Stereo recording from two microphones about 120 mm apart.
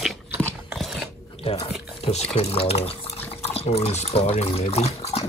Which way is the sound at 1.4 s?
50° left (ahead or behind).